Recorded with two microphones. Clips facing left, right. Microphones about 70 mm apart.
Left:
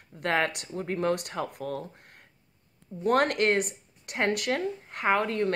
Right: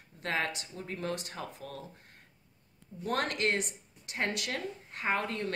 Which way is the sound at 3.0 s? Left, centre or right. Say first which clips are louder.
Left 8 dB; left.